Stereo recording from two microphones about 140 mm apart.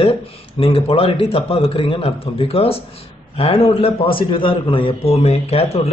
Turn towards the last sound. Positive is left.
turn(degrees=45)  # may be behind; listen again after turning